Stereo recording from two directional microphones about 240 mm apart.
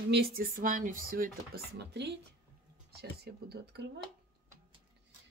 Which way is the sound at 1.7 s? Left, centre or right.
Right.